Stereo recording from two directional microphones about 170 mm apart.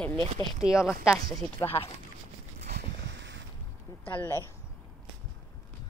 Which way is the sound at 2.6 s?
80° right.